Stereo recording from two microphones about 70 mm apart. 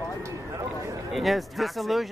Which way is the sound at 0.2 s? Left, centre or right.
Right.